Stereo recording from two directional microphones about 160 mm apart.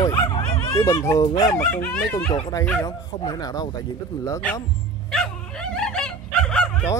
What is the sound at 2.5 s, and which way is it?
Speech, 15° left (ahead or behind).